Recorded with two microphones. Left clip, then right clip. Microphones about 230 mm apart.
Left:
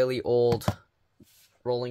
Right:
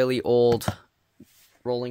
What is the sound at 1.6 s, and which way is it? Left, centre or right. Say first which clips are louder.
Speech: right 1 dB; right.